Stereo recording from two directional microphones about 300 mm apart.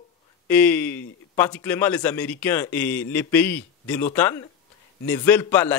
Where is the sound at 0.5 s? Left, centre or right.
Centre.